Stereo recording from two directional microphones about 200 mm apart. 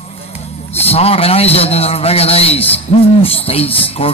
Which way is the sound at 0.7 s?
30° left (ahead or behind).